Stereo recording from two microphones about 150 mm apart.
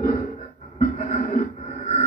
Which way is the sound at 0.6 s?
55° left (ahead or behind).